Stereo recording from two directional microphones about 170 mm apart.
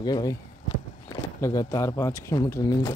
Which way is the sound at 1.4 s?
20° left (ahead or behind).